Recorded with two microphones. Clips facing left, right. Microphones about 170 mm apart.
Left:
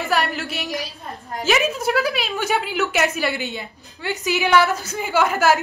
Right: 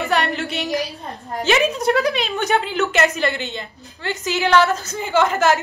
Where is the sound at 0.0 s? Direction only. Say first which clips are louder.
Right 2 dB; centre (ahead or behind).